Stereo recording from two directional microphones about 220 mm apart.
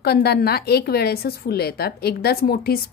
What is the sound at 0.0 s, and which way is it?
Speech, 45° left (ahead or behind).